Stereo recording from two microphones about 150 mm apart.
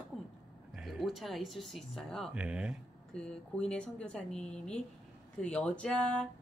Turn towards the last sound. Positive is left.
turn(degrees=5)  # may be behind; listen again after turning